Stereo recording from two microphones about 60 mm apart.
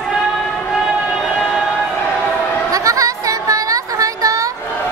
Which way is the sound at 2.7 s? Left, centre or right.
Right.